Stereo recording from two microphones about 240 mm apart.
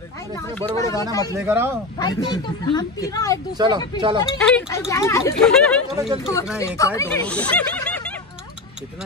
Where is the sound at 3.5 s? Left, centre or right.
Centre.